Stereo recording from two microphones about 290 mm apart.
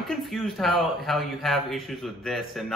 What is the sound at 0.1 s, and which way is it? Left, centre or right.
Speech, centre.